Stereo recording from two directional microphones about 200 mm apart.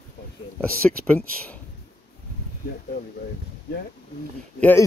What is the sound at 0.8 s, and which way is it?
Speech, 5° left (ahead or behind).